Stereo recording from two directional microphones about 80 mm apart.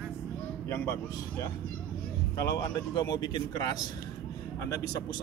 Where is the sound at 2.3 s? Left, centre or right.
Left.